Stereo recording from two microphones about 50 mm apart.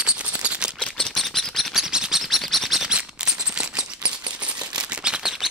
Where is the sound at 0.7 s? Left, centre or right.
Centre.